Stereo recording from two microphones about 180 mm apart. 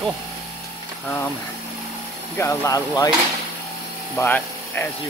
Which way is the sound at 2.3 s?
15° left (ahead or behind).